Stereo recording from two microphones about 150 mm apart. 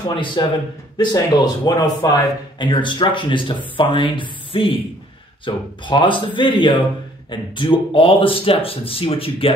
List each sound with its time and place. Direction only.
0.1 s speech: 35° left (ahead or behind)